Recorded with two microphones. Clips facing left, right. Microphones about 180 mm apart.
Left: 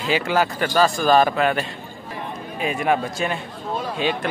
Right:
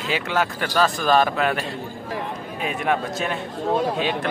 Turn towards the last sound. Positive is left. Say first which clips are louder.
# right 1 dB
turn(degrees=0)  # may be behind; listen again after turning